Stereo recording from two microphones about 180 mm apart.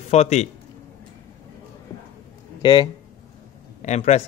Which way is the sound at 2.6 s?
25° left (ahead or behind).